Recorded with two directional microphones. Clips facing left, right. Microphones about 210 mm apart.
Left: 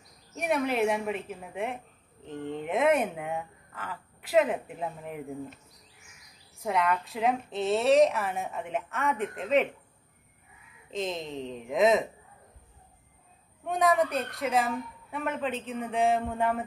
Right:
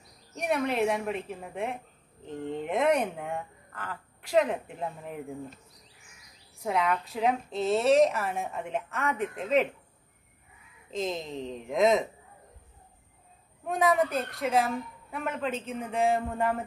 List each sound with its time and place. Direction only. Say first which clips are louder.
0.3 s a woman's voice: even; centre (ahead or behind)
6.6 s a woman's voice: even; centre (ahead or behind)
10.9 s a woman's voice: right 1 dB; centre (ahead or behind)
13.7 s a woman's voice: even; centre (ahead or behind)